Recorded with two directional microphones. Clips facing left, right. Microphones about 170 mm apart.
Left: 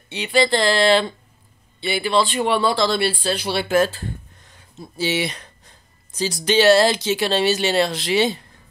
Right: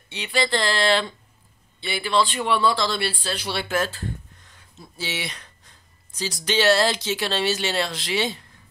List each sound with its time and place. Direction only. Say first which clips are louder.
0.1 s speech: left 6 dB; 15° left (ahead or behind)
3.6 s speech: left 8 dB; 30° left (ahead or behind)
6.4 s speech: left 5 dB; 15° left (ahead or behind)